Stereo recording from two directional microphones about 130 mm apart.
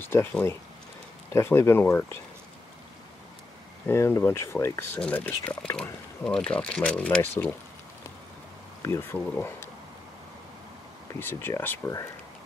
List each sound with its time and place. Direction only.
0.0 s speech: 15° left (ahead or behind)
3.8 s speech: 20° left (ahead or behind)
8.8 s speech: 20° left (ahead or behind)
11.1 s speech: 20° left (ahead or behind)